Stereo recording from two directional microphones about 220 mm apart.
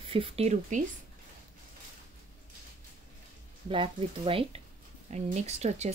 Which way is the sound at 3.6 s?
25° right (ahead or behind).